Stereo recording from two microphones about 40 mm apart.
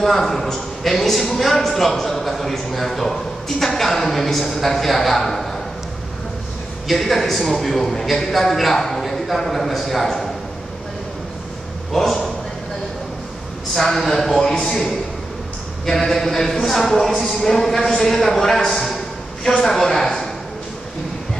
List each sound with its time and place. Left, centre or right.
0.0 s a man's voice: centre
6.9 s a man's voice: centre
11.9 s a man's voice: centre
13.7 s a man's voice: centre
18.4 s a sound: centre
19.6 s a man's voice: centre